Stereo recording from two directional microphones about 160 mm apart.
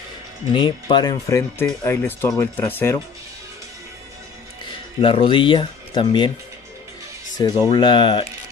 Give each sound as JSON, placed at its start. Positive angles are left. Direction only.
{"t": 0.5, "sound": "speech", "side_deg": 30}
{"t": 5.0, "sound": "speech", "side_deg": 30}
{"t": 7.3, "sound": "speech", "side_deg": 25}